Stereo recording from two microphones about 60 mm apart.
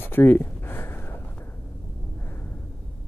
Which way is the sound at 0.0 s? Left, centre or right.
Left.